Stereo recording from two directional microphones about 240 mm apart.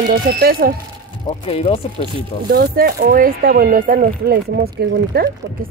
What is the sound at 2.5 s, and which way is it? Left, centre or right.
Speech, right.